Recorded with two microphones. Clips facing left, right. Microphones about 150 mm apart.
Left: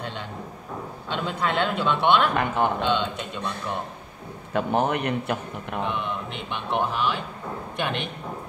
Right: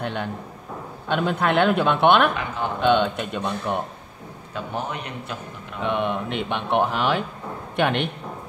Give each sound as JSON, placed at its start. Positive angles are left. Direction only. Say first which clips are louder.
{"t": 0.0, "sound": "a man's voice", "louder": "right 5 dB", "side_deg": -60}
{"t": 2.3, "sound": "a man's voice", "louder": "left 5 dB", "side_deg": 60}
{"t": 2.8, "sound": "speech", "louder": "right 5 dB", "side_deg": -60}
{"t": 4.6, "sound": "a man's voice", "louder": "left 6 dB", "side_deg": 60}
{"t": 5.9, "sound": "speech", "louder": "right 5 dB", "side_deg": -60}